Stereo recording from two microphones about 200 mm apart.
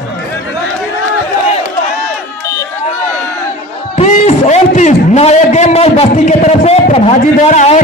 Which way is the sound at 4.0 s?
35° left (ahead or behind).